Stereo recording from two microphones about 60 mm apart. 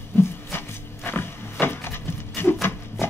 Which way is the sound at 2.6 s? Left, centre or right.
Left.